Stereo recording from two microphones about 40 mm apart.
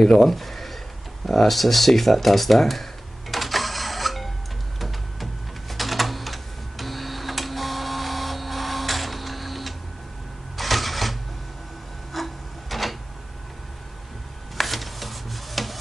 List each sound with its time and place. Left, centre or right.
0.0 s speech: centre
1.2 s a sound: centre
4.7 s typewriter: centre
10.6 s mechanisms: centre
12.1 s printer: centre
14.6 s a sound: centre